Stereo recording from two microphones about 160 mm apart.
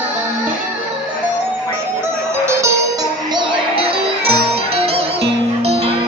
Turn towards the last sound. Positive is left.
turn(degrees=-40)  # may be behind; listen again after turning